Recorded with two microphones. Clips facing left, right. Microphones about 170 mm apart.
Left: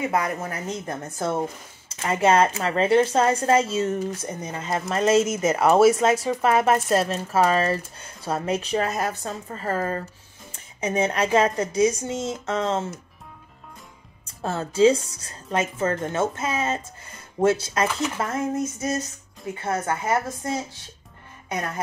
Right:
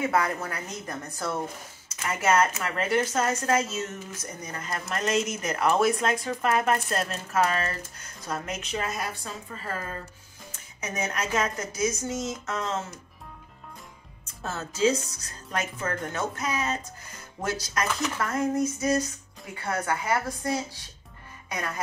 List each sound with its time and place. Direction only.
0.1 s speech: 20° left (ahead or behind); by 10.0 s 45° left (ahead or behind)
10.8 s speech: 30° left (ahead or behind)
14.2 s speech: 30° left (ahead or behind)